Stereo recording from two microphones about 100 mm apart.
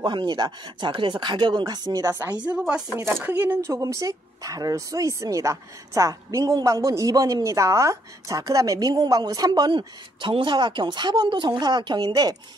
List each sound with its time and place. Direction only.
0.0 s a woman's voice: 50° right (ahead or behind)
2.1 s a woman's voice: 15° right (ahead or behind)
3.0 s speech: 25° right (ahead or behind)
3.7 s speech: 35° right (ahead or behind)
9.5 s a woman's voice: 55° right (ahead or behind)